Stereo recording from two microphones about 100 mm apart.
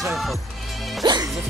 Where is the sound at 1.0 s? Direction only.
45° right (ahead or behind).